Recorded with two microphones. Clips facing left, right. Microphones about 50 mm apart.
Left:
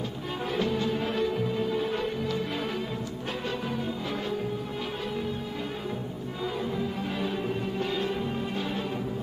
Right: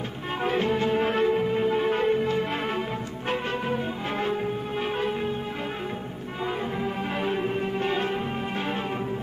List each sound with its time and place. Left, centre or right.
0.5 s music: right
3.6 s music: right
6.8 s music: right